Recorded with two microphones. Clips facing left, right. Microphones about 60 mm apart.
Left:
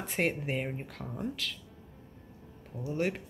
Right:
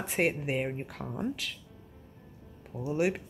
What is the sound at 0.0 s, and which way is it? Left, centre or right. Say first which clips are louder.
Speech: right 2 dB; centre.